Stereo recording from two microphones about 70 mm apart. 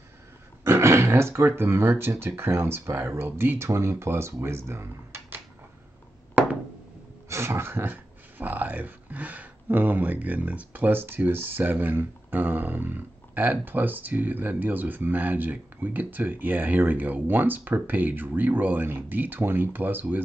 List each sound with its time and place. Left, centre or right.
0.7 s speech: right
7.2 s speech: right